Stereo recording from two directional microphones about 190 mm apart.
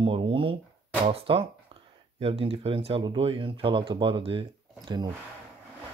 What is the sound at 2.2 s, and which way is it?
Speech, 30° right (ahead or behind).